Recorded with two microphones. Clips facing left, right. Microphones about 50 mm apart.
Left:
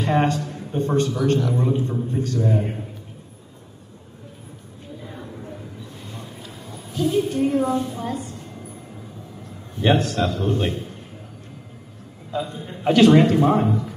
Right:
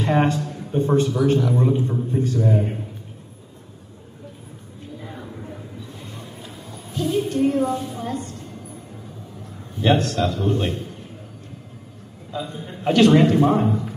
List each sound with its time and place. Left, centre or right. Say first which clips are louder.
0.0 s a man's voice: right 1 dB; centre
0.4 s a sound: right 1 dB; centre
0.7 s a man's voice: right 2 dB; centre
2.1 s a man's voice: right 2 dB; centre
5.0 s a sound: even; centre
9.8 s a man's voice: even; centre
12.4 s a man's voice: even; centre
13.4 s speech: even; centre